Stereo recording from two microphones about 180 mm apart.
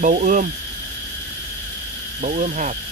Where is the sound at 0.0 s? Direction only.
45° right (ahead or behind).